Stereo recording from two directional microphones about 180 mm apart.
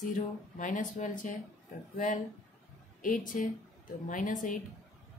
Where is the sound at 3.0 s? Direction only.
50° left (ahead or behind).